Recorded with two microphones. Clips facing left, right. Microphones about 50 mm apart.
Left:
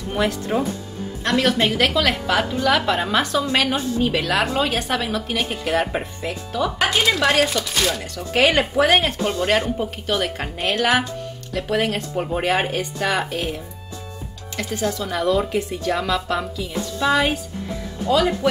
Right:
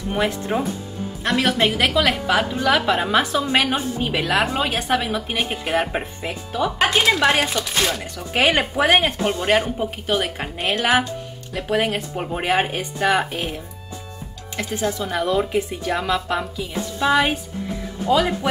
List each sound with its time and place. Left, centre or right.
0.1 s a woman's voice: centre
7.8 s a woman's voice: centre
14.6 s a woman's voice: centre